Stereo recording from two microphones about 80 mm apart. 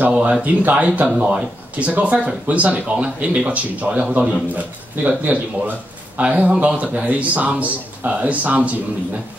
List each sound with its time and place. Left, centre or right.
0.0 s speech: centre